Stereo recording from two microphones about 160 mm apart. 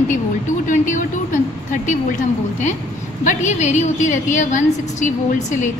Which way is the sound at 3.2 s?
50° left (ahead or behind).